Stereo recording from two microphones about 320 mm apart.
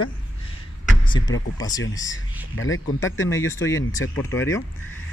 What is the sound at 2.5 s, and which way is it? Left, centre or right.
Speech, left.